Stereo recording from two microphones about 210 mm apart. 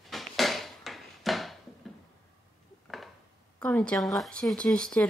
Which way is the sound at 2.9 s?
Centre (ahead or behind).